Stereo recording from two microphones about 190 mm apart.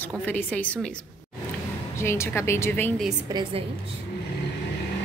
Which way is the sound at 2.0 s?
15° left (ahead or behind).